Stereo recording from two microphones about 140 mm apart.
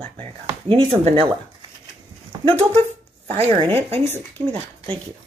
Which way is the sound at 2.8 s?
50° right (ahead or behind).